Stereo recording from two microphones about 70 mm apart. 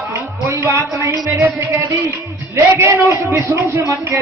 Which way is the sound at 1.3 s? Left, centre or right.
Right.